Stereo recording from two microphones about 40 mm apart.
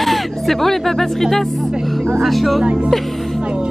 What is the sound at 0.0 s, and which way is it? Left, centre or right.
Speech, centre.